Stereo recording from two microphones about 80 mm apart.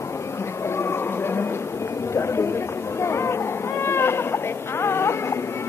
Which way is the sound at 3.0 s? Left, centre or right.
Left.